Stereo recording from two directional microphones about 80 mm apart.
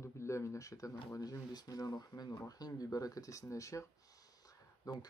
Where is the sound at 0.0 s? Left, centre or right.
Left.